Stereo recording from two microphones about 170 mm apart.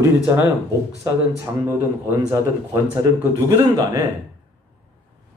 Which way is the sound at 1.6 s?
20° right (ahead or behind).